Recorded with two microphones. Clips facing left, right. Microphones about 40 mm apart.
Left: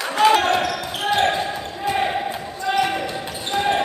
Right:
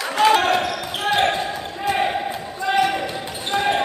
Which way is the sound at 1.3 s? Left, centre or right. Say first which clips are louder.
Even; centre.